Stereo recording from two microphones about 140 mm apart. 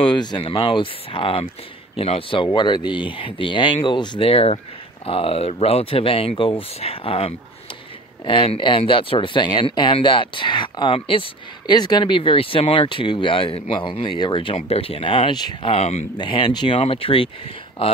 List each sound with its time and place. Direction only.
0.0 s speech: 35° left (ahead or behind)
15.7 s speech: 50° left (ahead or behind)
16.2 s speech: 35° left (ahead or behind)